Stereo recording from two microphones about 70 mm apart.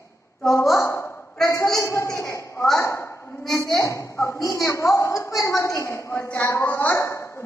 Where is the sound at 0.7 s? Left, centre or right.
Left.